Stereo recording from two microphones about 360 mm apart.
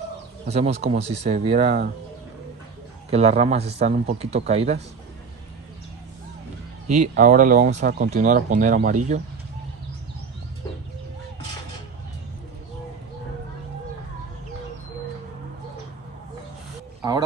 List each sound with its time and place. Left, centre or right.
0.5 s speech: centre
3.1 s speech: centre
6.9 s speech: right